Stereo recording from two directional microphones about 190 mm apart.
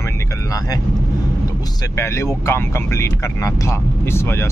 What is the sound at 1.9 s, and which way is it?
Speech, 15° left (ahead or behind).